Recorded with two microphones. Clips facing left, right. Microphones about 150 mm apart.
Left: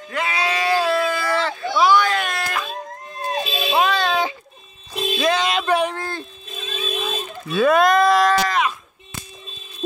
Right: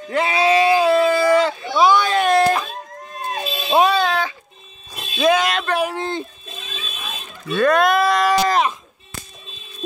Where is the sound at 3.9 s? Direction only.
5° right (ahead or behind).